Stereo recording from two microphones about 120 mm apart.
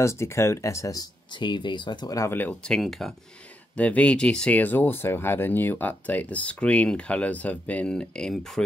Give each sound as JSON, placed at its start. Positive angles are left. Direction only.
{"t": 0.0, "sound": "speech", "side_deg": 25}
{"t": 1.4, "sound": "speech", "side_deg": 40}
{"t": 2.7, "sound": "speech", "side_deg": 0}